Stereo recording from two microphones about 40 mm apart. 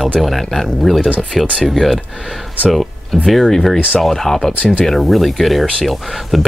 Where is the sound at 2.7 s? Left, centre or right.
Centre.